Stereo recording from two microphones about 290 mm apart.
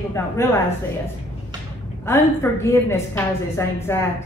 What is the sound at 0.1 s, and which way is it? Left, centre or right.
Speech, centre.